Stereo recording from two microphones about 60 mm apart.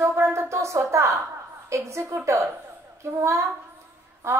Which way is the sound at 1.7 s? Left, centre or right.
Right.